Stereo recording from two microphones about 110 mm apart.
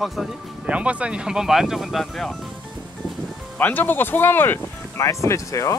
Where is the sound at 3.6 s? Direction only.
15° left (ahead or behind).